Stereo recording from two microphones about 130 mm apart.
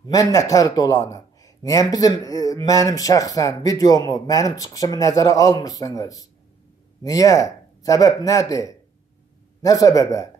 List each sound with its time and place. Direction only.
0.0 s speech: 25° left (ahead or behind)